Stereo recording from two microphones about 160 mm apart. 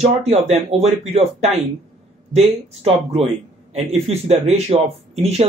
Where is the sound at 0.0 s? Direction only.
40° right (ahead or behind).